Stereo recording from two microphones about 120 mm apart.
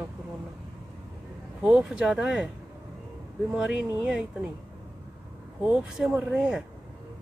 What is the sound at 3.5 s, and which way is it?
Speech, 10° right (ahead or behind).